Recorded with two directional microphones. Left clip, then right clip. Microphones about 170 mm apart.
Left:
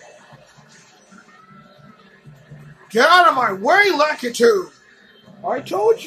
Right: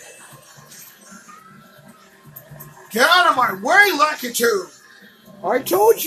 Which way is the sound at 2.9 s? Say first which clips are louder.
Left 2 dB; 55° left (ahead or behind).